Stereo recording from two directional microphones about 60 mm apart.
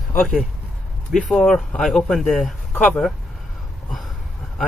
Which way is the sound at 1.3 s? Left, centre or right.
Centre.